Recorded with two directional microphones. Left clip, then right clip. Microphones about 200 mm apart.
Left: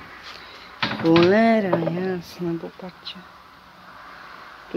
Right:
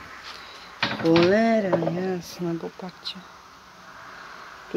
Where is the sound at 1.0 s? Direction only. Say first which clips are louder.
Left 3 dB; centre (ahead or behind).